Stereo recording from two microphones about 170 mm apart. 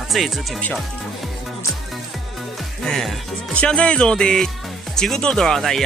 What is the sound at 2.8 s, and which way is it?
Speech, 5° left (ahead or behind).